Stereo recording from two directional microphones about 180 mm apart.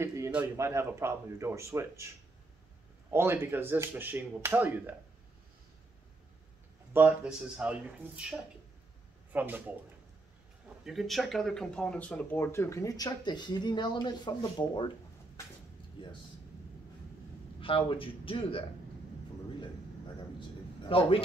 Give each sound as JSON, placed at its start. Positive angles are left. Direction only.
{"t": 0.0, "sound": "speech", "side_deg": -10}
{"t": 3.1, "sound": "speech", "side_deg": -15}
{"t": 6.9, "sound": "speech", "side_deg": -10}
{"t": 10.9, "sound": "speech", "side_deg": 0}
{"t": 17.6, "sound": "a man's voice", "side_deg": 30}
{"t": 20.3, "sound": "a sound", "side_deg": 30}